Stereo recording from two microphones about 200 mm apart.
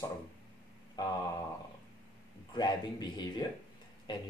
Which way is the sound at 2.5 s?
20° left (ahead or behind).